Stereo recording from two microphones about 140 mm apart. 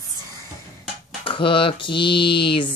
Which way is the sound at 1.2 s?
40° left (ahead or behind).